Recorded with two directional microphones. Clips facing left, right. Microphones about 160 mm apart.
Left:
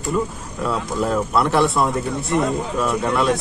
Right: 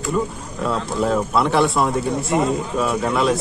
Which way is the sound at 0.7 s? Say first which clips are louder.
Right 1 dB; centre (ahead or behind).